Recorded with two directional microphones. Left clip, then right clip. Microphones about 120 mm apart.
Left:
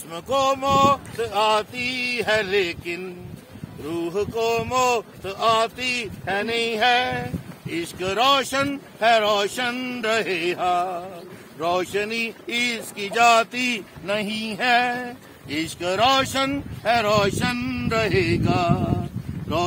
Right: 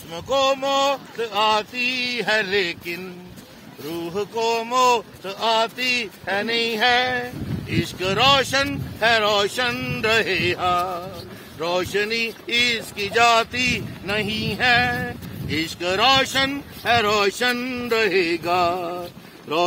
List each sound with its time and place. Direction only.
0.1 s speech: 35° left (ahead or behind)
8.0 s speech: 20° left (ahead or behind)
11.6 s speech: 25° left (ahead or behind)